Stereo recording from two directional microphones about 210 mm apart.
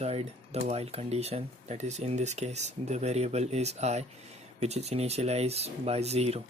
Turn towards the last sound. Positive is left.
turn(degrees=-30)  # may be behind; listen again after turning